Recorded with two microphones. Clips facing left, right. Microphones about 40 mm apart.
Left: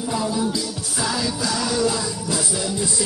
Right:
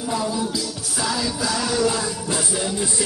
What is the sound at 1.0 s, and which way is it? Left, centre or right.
Music, centre.